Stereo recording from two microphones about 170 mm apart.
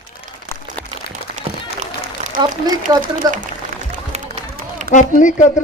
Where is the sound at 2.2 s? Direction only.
45° right (ahead or behind).